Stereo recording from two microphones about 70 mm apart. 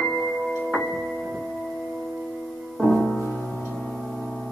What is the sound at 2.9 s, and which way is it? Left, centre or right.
Music, centre.